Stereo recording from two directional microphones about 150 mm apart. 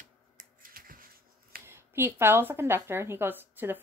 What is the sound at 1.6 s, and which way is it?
A woman's voice, 15° right (ahead or behind).